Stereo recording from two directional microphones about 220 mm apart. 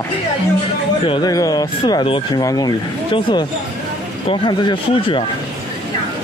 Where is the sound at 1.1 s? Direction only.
20° left (ahead or behind).